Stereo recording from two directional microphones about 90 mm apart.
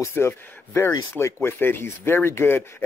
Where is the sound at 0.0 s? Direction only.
30° left (ahead or behind).